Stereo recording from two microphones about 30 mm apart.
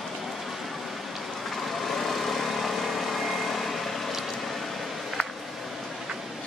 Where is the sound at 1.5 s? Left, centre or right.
Centre.